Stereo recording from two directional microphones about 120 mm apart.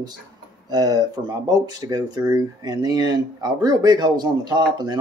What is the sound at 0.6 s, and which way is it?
Speech, 35° right (ahead or behind).